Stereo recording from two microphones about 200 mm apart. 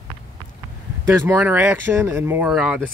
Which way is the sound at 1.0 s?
10° right (ahead or behind).